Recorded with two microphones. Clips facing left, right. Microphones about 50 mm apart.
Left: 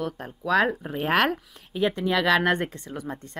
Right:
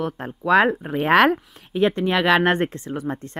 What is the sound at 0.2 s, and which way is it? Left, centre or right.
Speech, right.